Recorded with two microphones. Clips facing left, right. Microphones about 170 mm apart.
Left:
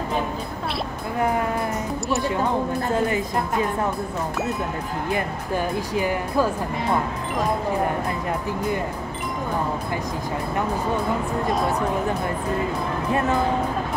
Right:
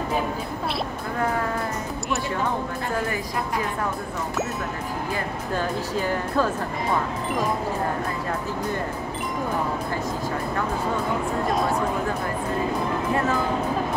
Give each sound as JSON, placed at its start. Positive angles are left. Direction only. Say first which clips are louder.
{"t": 2.9, "sound": "a woman's voice", "louder": "left 4 dB", "side_deg": 25}
{"t": 5.1, "sound": "speech", "louder": "left 4 dB", "side_deg": 15}